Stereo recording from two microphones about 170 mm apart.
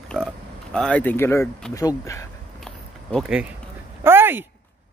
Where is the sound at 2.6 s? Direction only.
5° left (ahead or behind).